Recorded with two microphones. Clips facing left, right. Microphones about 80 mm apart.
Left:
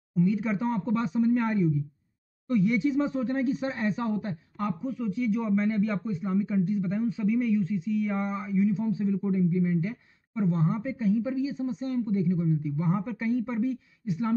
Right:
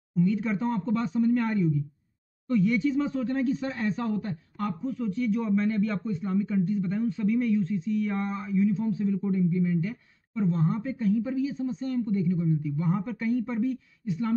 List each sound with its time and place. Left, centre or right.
0.1 s speech: centre